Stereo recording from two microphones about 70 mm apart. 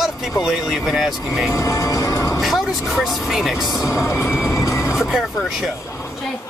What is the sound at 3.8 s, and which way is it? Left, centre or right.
Music, left.